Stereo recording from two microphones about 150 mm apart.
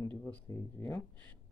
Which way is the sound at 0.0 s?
10° left (ahead or behind).